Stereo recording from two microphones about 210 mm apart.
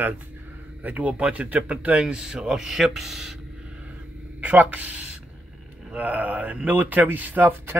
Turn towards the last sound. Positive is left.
turn(degrees=-10)  # may be behind; listen again after turning